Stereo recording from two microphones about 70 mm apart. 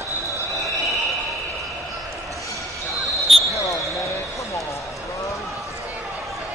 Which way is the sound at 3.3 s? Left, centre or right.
Centre.